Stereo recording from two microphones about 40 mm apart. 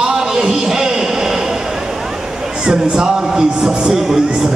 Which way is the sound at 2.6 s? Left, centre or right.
Centre.